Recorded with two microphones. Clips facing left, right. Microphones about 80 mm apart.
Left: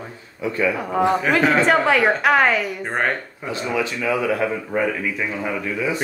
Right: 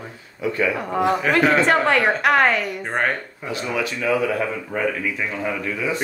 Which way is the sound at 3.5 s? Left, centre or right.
Left.